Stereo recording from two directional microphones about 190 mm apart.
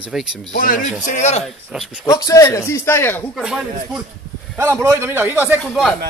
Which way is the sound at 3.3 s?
5° right (ahead or behind).